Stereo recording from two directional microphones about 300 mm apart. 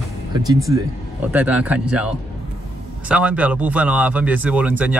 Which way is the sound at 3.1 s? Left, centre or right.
Centre.